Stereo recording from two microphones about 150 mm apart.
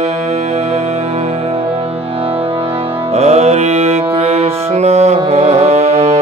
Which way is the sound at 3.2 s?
45° right (ahead or behind).